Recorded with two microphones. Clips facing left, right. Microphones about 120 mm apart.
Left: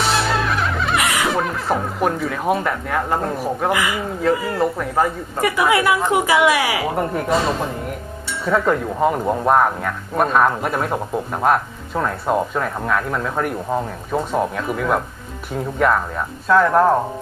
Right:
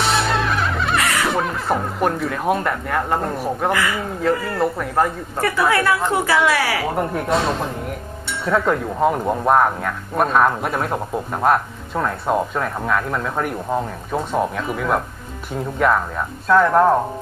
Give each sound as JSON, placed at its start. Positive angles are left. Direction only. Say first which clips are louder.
{"t": 0.0, "sound": "music", "louder": "even", "side_deg": 0}
{"t": 0.9, "sound": "snicker", "louder": "left 1 dB", "side_deg": 15}
{"t": 1.3, "sound": "speech", "louder": "even", "side_deg": 0}
{"t": 3.7, "sound": "speech", "louder": "even", "side_deg": 10}
{"t": 5.4, "sound": "speech", "louder": "left 1 dB", "side_deg": 15}
{"t": 6.9, "sound": "speech", "louder": "left 1 dB", "side_deg": 0}